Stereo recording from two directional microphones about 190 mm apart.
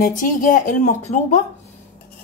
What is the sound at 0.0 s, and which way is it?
A woman's voice, 45° left (ahead or behind).